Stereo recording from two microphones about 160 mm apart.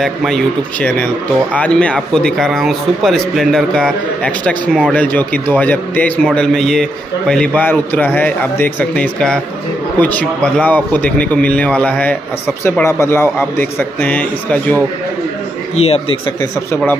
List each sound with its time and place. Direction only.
0.0 s a man's voice: centre (ahead or behind)
15.7 s speech: 40° left (ahead or behind)
16.7 s a man's voice: 10° left (ahead or behind)